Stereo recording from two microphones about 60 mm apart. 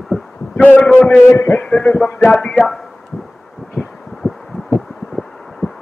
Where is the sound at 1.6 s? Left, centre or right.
Centre.